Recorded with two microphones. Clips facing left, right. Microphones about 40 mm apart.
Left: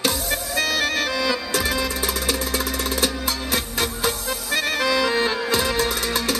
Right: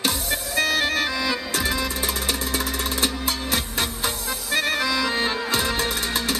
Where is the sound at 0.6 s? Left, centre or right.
Right.